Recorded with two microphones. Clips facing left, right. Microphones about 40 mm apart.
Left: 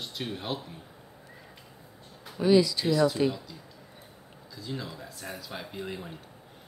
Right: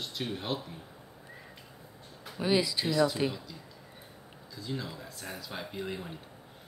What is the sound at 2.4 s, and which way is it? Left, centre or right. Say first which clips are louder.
Speech: left 6 dB; centre.